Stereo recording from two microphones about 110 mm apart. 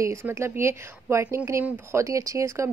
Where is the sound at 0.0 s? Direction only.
25° right (ahead or behind).